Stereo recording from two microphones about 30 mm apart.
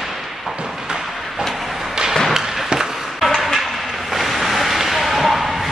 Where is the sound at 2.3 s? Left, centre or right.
Centre.